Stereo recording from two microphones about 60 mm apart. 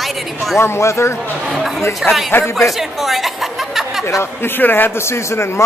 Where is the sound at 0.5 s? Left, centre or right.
Left.